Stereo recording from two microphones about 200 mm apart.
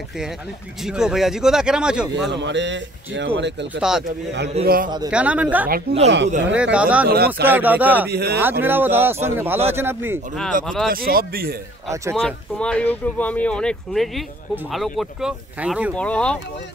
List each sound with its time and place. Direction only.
0.8 s speech: 5° right (ahead or behind)
2.2 s speech: 60° right (ahead or behind)
4.6 s speech: 45° right (ahead or behind)
5.1 s a man's voice: 5° right (ahead or behind)
6.0 s speech: 60° right (ahead or behind)
6.5 s a man's voice: 5° right (ahead or behind)
7.1 s speech: 55° right (ahead or behind)
7.4 s a man's voice: 10° right (ahead or behind)
8.1 s speech: 55° right (ahead or behind)
8.4 s a man's voice: 10° right (ahead or behind)
10.5 s speech: 40° right (ahead or behind)
11.9 s a man's voice: 15° right (ahead or behind)
12.2 s speech: 5° left (ahead or behind)